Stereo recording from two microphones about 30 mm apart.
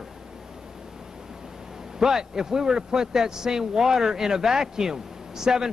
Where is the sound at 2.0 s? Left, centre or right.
Centre.